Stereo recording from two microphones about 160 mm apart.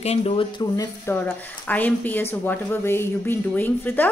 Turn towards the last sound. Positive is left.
turn(degrees=10)  # may be behind; listen again after turning